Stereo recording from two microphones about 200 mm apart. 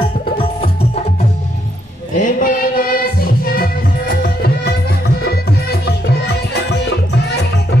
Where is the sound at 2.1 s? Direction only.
40° left (ahead or behind); by 6.9 s 55° left (ahead or behind).